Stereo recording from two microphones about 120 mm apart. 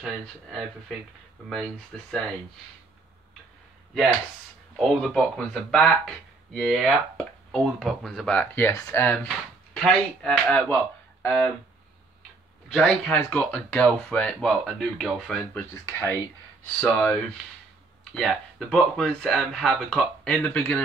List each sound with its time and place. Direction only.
0.0 s speech: centre (ahead or behind)
4.7 s speech: 5° left (ahead or behind)
9.8 s speech: 5° left (ahead or behind)
12.6 s speech: 5° left (ahead or behind)
15.7 s speech: 25° left (ahead or behind)